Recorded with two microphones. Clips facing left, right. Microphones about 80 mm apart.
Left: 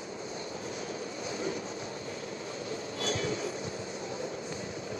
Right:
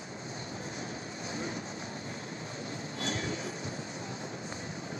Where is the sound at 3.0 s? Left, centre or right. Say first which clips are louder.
Left 3 dB; right.